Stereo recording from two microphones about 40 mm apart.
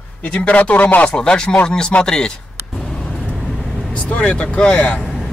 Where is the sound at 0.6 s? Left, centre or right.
Left.